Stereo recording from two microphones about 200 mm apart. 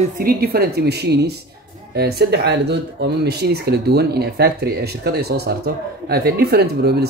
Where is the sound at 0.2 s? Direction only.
50° right (ahead or behind).